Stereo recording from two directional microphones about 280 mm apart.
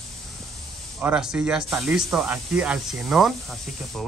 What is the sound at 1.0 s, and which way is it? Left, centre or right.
Speech, centre.